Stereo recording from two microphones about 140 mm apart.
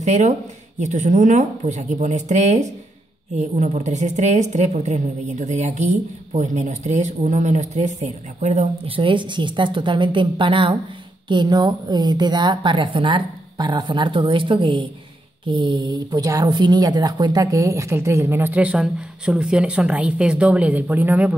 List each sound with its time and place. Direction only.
0.0 s a woman's voice: 55° right (ahead or behind); by 21.4 s 10° right (ahead or behind)